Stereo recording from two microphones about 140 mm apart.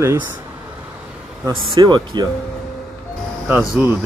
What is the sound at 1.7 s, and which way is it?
Speech, 30° right (ahead or behind).